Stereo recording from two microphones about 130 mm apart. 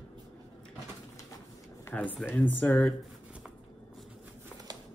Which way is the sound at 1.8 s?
10° left (ahead or behind).